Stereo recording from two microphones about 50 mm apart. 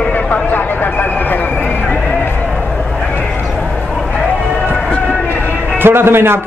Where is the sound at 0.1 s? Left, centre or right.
Left.